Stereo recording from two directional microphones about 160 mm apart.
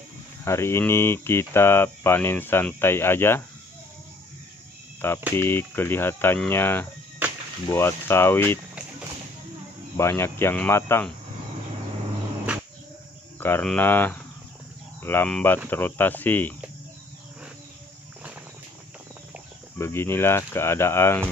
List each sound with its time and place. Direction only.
0.5 s speech: 15° left (ahead or behind)
5.3 s speech: 15° left (ahead or behind)
9.9 s speech: 15° left (ahead or behind)
13.4 s speech: 10° left (ahead or behind)
19.8 s speech: 15° left (ahead or behind)